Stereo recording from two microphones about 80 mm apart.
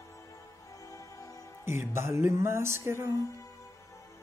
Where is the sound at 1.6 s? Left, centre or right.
Right.